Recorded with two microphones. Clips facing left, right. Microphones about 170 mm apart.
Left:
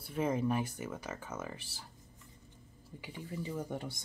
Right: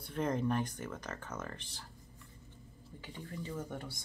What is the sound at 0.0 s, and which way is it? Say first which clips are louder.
Speech: left 1 dB; 5° left (ahead or behind).